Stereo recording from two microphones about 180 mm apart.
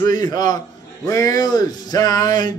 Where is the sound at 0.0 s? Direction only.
20° left (ahead or behind).